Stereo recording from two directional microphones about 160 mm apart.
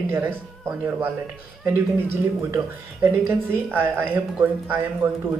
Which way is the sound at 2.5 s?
15° right (ahead or behind).